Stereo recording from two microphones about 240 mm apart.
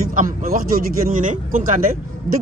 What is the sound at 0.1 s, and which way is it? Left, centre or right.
Speech, right.